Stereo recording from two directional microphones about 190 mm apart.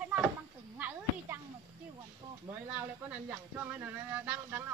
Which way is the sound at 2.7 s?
10° right (ahead or behind).